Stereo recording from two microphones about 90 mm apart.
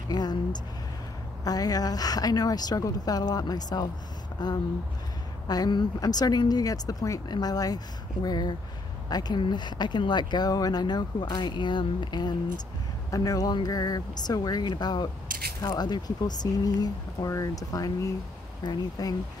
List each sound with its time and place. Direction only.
0.1 s speech: 50° left (ahead or behind)
13.1 s speech: 40° left (ahead or behind)